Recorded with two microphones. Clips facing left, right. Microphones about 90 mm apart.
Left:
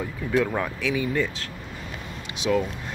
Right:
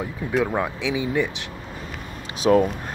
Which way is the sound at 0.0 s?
20° right (ahead or behind).